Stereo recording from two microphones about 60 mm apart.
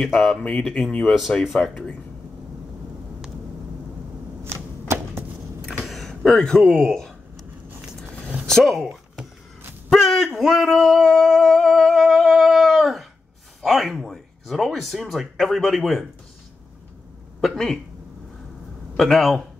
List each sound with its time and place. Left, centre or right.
0.0 s speech: centre
0.4 s speech: centre
1.7 s speech: centre
5.9 s door: centre
7.8 s vehicle: centre
8.5 s speech: centre
9.8 s a sound: centre
13.6 s speech: centre
17.4 s speech: centre
18.9 s speech: centre